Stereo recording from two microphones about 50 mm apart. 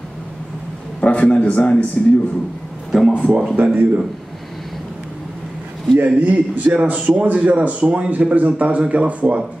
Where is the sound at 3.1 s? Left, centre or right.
Centre.